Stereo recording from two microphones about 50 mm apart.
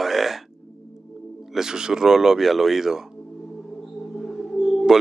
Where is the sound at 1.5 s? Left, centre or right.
Centre.